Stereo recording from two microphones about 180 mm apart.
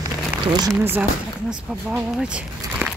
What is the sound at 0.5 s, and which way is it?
Speech, 20° right (ahead or behind).